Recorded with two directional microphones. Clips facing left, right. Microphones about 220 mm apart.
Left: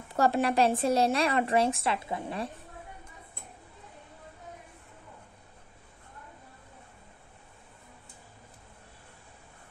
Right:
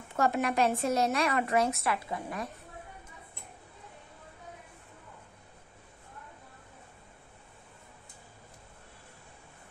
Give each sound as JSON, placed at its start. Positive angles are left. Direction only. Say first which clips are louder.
{"t": 0.1, "sound": "speech", "louder": "left 3 dB", "side_deg": 35}